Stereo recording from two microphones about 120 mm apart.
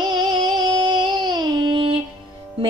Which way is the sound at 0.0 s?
40° right (ahead or behind).